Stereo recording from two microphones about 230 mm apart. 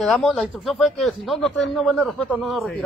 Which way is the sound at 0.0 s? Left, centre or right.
Centre.